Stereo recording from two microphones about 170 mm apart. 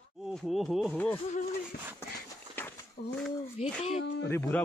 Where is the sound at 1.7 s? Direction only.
70° left (ahead or behind).